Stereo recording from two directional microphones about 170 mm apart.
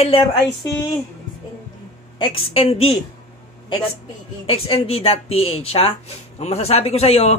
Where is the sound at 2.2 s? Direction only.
35° left (ahead or behind).